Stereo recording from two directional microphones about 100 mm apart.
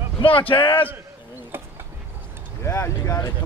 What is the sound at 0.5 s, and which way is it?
Speech, 60° left (ahead or behind).